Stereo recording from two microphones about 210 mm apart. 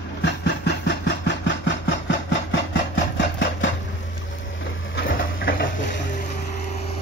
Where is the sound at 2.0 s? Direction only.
60° left (ahead or behind).